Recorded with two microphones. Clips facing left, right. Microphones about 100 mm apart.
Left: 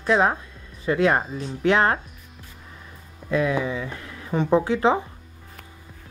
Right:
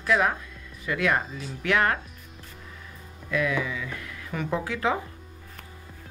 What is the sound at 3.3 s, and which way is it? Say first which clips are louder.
Speech: left 4 dB; 30° left (ahead or behind).